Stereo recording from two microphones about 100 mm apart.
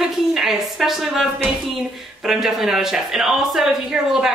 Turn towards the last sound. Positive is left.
turn(degrees=-5)  # may be behind; listen again after turning